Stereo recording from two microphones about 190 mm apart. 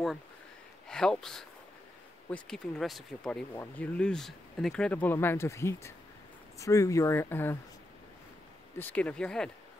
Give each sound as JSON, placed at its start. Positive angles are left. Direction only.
{"t": 0.8, "sound": "speech", "side_deg": 5}
{"t": 8.7, "sound": "speech", "side_deg": 10}